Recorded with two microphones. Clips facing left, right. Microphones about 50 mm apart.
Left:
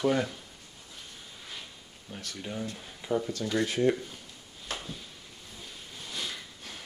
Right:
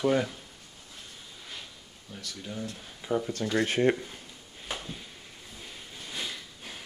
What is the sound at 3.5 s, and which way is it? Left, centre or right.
Speech, right.